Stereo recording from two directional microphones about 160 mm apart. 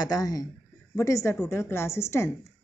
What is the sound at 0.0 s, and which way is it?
A woman's voice, 25° left (ahead or behind).